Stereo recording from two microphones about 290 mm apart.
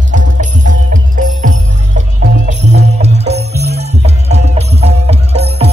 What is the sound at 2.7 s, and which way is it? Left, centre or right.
Music, right.